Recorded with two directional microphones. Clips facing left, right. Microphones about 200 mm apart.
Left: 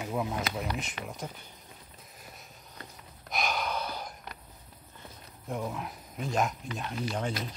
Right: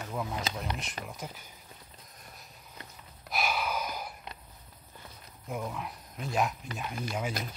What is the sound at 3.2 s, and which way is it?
Gasp, 5° right (ahead or behind).